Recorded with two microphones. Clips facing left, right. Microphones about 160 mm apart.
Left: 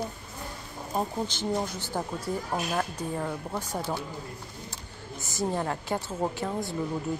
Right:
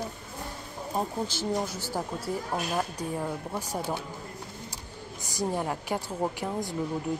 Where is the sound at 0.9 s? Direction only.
5° right (ahead or behind).